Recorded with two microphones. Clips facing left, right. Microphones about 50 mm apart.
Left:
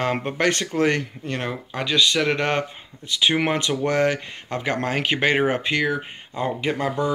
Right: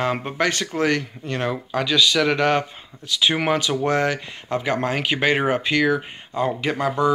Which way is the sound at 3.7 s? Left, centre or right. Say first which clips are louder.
Right 1 dB; right.